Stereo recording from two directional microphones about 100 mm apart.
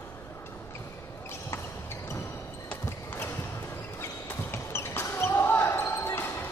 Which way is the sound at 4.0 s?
20° left (ahead or behind).